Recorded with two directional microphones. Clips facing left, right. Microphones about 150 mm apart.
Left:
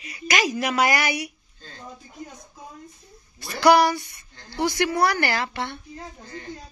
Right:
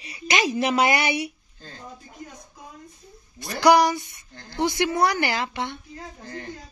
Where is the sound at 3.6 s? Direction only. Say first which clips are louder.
Even; 15° right (ahead or behind).